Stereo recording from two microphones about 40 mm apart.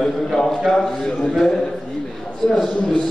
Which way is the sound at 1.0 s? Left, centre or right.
Left.